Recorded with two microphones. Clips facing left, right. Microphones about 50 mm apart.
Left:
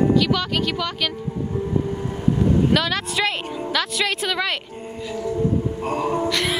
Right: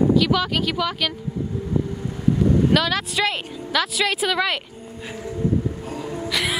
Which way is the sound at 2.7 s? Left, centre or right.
Centre.